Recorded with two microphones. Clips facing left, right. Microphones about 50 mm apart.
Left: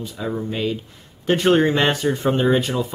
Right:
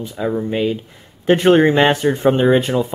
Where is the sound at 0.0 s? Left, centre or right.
Centre.